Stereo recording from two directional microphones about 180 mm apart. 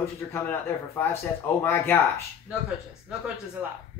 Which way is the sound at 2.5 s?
10° right (ahead or behind).